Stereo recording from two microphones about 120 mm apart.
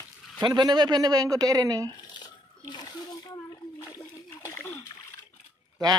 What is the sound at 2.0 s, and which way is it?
Water, 40° left (ahead or behind).